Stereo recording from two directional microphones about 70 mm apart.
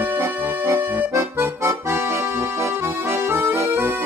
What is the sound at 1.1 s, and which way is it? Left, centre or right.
Accordion, right.